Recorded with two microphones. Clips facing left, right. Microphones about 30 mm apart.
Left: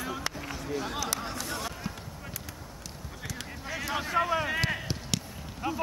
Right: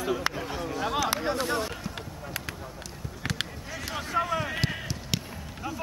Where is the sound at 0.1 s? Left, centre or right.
Centre.